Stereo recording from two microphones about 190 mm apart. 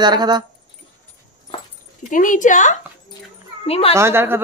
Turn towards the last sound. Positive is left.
turn(degrees=-15)  # may be behind; listen again after turning